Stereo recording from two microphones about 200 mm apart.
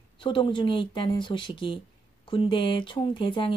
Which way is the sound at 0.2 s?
25° left (ahead or behind).